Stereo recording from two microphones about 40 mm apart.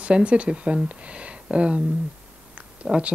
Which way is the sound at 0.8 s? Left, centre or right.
Right.